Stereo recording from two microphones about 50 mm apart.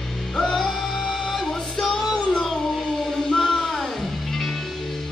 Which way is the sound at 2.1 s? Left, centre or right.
Centre.